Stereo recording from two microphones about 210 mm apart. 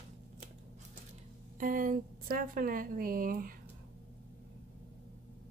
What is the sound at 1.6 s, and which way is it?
Speech, 40° right (ahead or behind).